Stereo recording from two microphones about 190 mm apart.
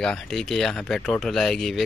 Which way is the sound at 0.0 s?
5° left (ahead or behind).